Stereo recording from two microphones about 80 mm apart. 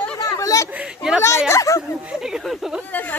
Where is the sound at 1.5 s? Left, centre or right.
Left.